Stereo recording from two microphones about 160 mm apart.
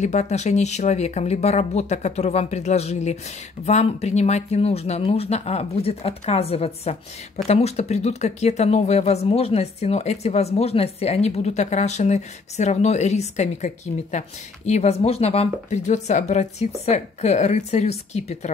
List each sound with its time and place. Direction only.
0.0 s speech: 45° left (ahead or behind)